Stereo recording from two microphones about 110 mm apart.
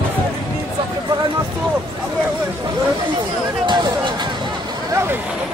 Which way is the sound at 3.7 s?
45° right (ahead or behind).